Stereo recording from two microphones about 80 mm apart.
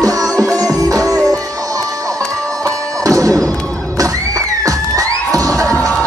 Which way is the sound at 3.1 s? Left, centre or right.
Right.